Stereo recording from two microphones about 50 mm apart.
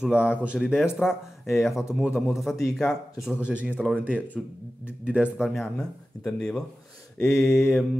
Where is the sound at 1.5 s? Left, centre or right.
Centre.